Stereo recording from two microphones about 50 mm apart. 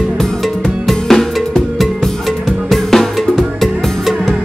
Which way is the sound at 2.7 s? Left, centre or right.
Centre.